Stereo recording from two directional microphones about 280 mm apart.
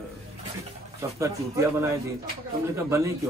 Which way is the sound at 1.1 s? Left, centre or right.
Centre.